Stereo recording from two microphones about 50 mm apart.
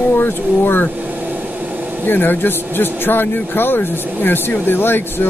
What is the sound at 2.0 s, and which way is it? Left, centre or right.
Speech, left.